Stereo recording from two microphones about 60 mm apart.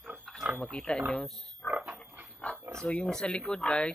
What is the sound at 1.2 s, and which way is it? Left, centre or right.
Speech, centre.